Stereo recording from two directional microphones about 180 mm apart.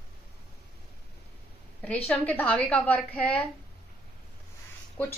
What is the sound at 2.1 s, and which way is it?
A woman's voice, 10° left (ahead or behind).